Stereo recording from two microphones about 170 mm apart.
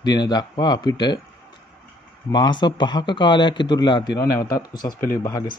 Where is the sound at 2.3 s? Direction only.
25° left (ahead or behind).